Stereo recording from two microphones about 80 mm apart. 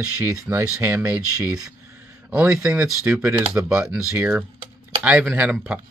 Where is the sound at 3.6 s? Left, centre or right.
Right.